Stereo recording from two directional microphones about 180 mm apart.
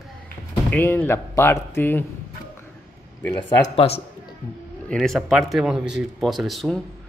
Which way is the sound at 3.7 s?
30° left (ahead or behind).